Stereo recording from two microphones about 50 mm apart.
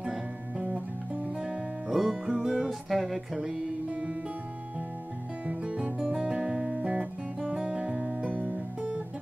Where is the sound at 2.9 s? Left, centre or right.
Centre.